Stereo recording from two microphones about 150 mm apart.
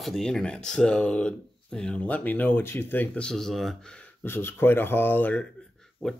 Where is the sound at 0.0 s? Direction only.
Centre (ahead or behind).